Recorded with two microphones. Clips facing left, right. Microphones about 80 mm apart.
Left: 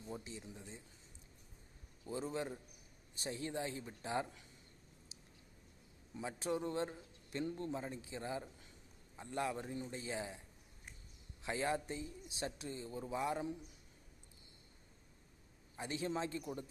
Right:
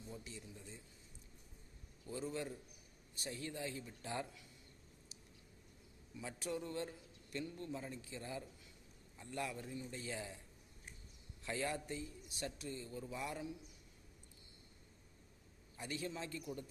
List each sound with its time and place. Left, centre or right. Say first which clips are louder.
0.2 s a man's voice: left 3 dB; left
2.0 s a man's voice: left 2 dB; left
6.1 s a man's voice: left 4 dB; left
9.9 s a man's voice: left 3 dB; left
11.4 s a man's voice: left 3 dB; left
15.7 s a man's voice: left 5 dB; left